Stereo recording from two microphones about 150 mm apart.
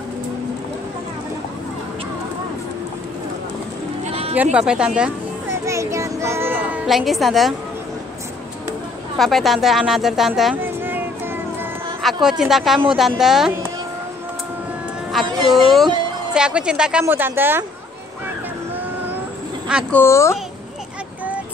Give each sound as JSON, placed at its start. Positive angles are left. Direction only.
{"t": 4.0, "sound": "sheep", "side_deg": -45}
{"t": 4.6, "sound": "a woman's voice", "side_deg": -5}
{"t": 5.5, "sound": "a child's voice", "side_deg": -20}
{"t": 9.2, "sound": "a woman's voice", "side_deg": 0}
{"t": 10.6, "sound": "a sound", "side_deg": -15}
{"t": 12.0, "sound": "a woman's voice", "side_deg": 0}
{"t": 15.2, "sound": "a sound", "side_deg": -30}
{"t": 15.6, "sound": "a woman's voice", "side_deg": 0}
{"t": 19.9, "sound": "a woman's voice", "side_deg": 15}